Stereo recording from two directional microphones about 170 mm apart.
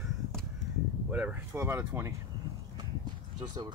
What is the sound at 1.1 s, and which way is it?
Speech, 10° right (ahead or behind).